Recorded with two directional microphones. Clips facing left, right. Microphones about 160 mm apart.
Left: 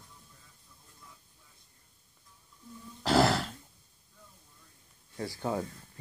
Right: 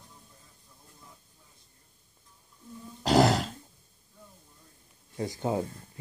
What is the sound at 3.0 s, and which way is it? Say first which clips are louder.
Throat clearing: right 3 dB; 20° right (ahead or behind).